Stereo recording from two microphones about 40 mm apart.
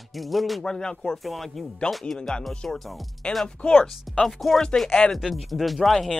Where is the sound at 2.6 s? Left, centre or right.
Centre.